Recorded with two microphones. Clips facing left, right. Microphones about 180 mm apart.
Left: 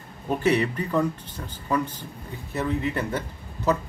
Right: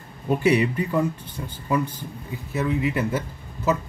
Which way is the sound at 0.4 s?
10° right (ahead or behind).